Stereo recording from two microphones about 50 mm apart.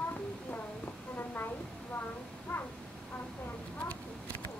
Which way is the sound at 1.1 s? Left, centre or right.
Left.